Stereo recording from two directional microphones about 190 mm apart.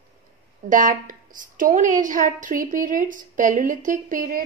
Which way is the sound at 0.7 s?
45° right (ahead or behind).